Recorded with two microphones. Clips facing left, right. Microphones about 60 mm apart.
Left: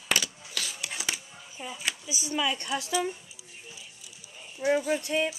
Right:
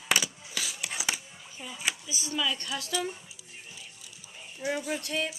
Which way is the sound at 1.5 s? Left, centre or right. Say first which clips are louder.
Left 3 dB; centre.